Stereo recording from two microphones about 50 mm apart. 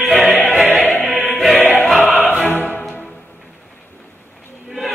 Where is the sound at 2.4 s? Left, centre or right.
Left.